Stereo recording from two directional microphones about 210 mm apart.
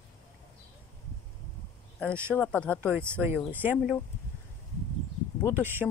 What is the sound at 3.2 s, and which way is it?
Speech, 10° right (ahead or behind).